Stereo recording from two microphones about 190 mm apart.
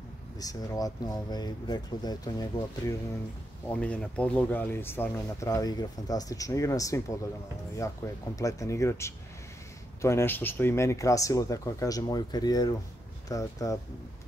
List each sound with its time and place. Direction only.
0.4 s speech: 20° left (ahead or behind)
3.6 s speech: 5° left (ahead or behind)